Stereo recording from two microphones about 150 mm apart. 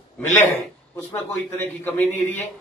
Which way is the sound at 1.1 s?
15° left (ahead or behind).